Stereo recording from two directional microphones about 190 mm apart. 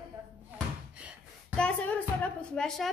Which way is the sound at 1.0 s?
5° right (ahead or behind).